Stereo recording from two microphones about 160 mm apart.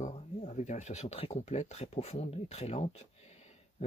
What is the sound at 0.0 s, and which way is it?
Speech, 45° left (ahead or behind).